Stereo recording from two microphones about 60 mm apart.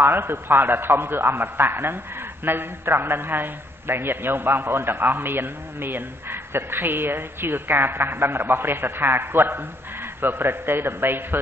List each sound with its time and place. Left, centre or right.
0.0 s a man's voice: right